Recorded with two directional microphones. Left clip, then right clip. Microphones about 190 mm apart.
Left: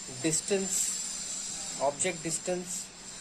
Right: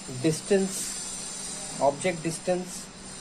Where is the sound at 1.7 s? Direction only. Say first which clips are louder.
Right 6 dB; 30° left (ahead or behind).